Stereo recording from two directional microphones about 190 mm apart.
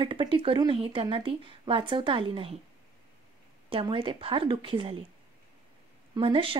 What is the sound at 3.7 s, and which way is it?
Speech, 25° right (ahead or behind).